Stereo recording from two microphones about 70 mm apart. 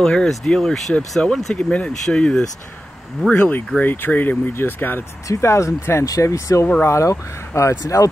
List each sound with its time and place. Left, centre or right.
0.0 s speech: centre
3.3 s speech: left
5.3 s speech: left